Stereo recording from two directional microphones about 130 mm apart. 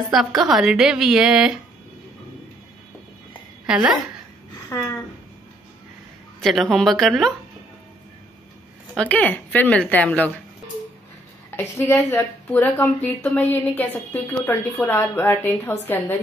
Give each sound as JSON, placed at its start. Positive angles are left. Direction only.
{"t": 0.1, "sound": "a woman's voice", "side_deg": 0}
{"t": 3.6, "sound": "a woman's voice", "side_deg": -5}
{"t": 6.4, "sound": "a woman's voice", "side_deg": 0}
{"t": 8.9, "sound": "speech", "side_deg": 10}
{"t": 11.5, "sound": "a woman's voice", "side_deg": 20}
{"t": 12.5, "sound": "speech", "side_deg": 15}